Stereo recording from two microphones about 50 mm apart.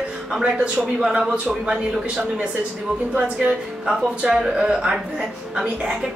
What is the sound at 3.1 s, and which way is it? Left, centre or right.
Speech, right.